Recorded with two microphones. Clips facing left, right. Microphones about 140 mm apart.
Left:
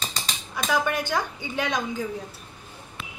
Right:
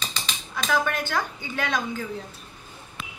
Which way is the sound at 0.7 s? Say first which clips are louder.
Left 1 dB; 15° left (ahead or behind).